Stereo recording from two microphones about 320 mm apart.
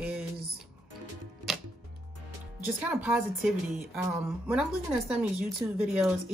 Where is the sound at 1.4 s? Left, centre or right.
Right.